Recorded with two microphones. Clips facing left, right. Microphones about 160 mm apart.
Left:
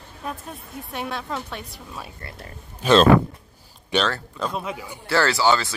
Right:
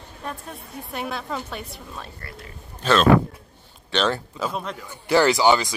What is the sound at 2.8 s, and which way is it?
Speech, 10° left (ahead or behind).